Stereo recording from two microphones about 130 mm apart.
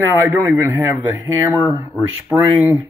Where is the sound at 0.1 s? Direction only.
15° right (ahead or behind).